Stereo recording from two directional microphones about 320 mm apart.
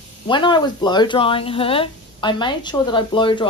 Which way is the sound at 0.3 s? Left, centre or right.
Centre.